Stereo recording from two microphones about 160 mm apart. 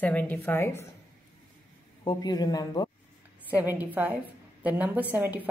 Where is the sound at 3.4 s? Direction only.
10° right (ahead or behind).